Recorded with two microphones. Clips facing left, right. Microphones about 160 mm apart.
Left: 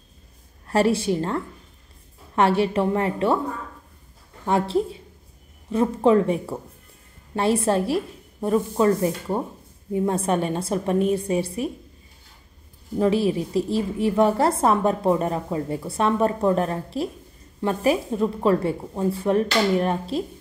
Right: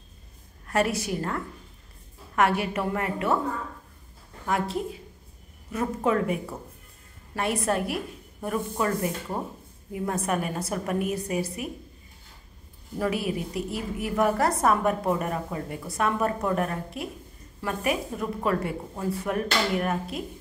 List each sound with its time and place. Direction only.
0.7 s a woman's voice: 30° left (ahead or behind)
4.5 s a woman's voice: 30° left (ahead or behind)
13.0 s a woman's voice: 30° left (ahead or behind)